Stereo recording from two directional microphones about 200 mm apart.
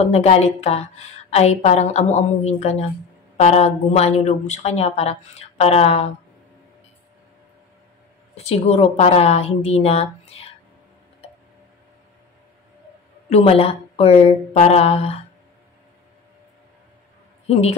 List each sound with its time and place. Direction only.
0.0 s a woman's voice: 35° left (ahead or behind)
8.4 s a woman's voice: 30° left (ahead or behind)
13.3 s a woman's voice: 30° left (ahead or behind)
17.5 s speech: 30° left (ahead or behind)